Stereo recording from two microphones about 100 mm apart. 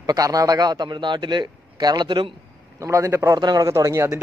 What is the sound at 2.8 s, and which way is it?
Speech, 30° right (ahead or behind).